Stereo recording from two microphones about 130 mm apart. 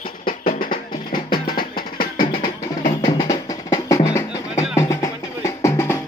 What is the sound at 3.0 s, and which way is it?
Music, 30° left (ahead or behind).